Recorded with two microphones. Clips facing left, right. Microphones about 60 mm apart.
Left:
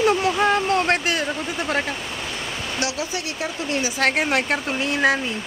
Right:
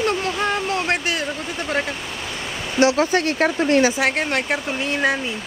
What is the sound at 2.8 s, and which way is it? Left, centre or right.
Speech, right.